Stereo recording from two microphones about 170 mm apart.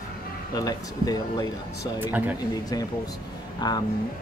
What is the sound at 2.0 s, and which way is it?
Speech, 10° right (ahead or behind).